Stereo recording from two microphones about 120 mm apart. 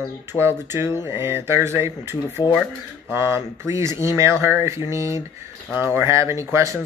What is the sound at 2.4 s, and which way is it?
Speech, 40° left (ahead or behind).